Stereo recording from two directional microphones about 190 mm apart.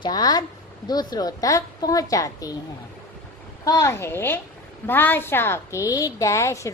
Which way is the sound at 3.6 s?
15° left (ahead or behind).